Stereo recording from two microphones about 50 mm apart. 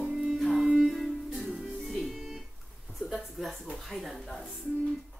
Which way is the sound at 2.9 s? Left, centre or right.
Centre.